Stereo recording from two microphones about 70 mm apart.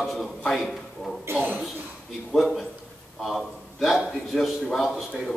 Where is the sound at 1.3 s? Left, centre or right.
Right.